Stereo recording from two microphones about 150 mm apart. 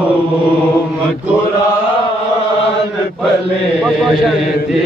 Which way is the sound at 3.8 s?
Centre (ahead or behind).